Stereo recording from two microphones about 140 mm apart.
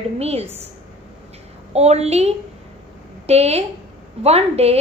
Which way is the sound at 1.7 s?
50° right (ahead or behind).